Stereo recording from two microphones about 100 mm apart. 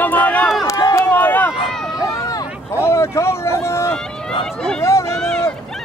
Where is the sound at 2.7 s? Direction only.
30° left (ahead or behind).